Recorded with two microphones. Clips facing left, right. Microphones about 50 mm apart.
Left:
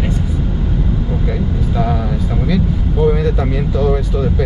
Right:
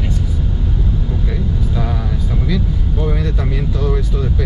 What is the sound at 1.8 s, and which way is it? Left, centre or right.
Vehicle, centre.